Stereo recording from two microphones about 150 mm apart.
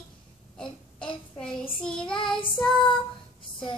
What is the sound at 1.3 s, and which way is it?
Child singing, 5° left (ahead or behind).